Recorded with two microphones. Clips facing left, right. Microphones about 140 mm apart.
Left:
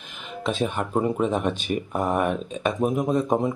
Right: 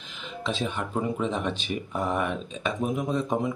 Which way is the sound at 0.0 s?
50° left (ahead or behind).